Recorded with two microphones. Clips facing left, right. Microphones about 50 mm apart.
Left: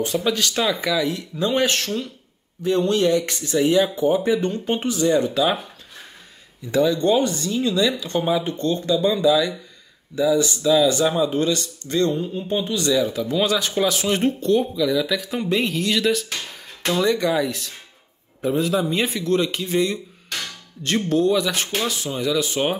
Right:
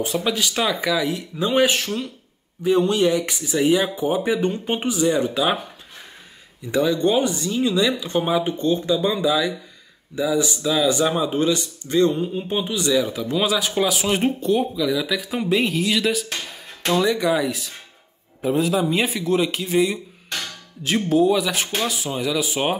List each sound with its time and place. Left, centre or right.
0.0 s speech: centre
6.7 s speech: right